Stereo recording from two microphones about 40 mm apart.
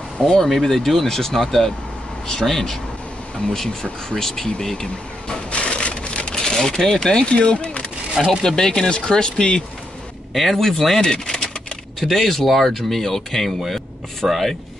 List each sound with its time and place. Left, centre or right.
0.2 s speech: centre
4.2 s speech: centre
5.5 s crushing: left
6.3 s speech: centre
8.3 s speech: centre
10.3 s speech: centre
12.0 s speech: centre